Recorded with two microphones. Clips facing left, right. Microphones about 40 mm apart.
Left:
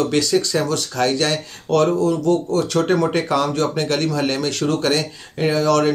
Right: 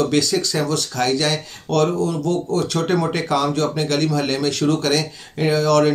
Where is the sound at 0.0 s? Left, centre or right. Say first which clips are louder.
Left 1 dB; centre.